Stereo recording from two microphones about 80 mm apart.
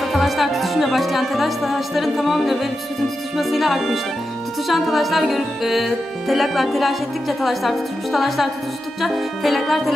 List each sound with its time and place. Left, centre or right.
0.0 s music: centre